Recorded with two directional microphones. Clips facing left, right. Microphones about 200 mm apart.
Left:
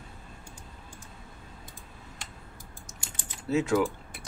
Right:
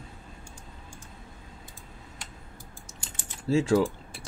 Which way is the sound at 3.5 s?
30° right (ahead or behind).